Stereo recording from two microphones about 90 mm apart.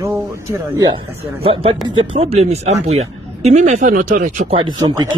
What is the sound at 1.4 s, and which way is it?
Speech, 90° right.